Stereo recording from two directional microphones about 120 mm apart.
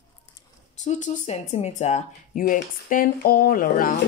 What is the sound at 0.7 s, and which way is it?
Speech, 90° left.